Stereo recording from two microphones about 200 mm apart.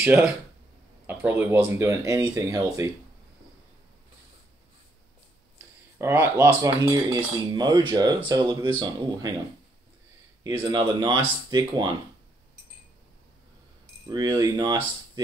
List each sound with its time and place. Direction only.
0.0 s speech: 5° right (ahead or behind)
5.9 s speech: 10° right (ahead or behind)
10.7 s speech: 20° right (ahead or behind)
14.0 s speech: 20° right (ahead or behind)